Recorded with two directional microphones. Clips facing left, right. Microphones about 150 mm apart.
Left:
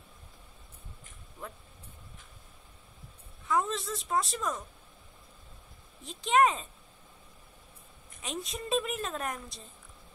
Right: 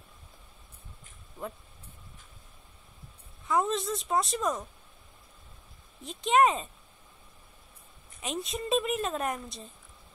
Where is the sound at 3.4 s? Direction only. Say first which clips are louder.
Right 2 dB; 25° right (ahead or behind).